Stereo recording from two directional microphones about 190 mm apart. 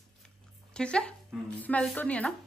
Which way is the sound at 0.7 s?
5° left (ahead or behind).